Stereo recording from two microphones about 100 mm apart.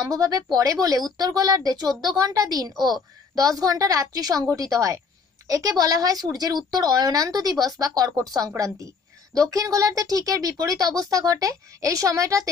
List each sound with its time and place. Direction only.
0.1 s a woman's voice: 35° right (ahead or behind)